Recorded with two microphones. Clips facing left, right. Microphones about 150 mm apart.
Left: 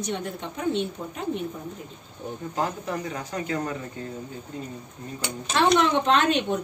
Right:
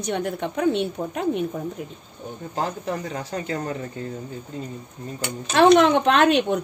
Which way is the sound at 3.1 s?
35° right (ahead or behind).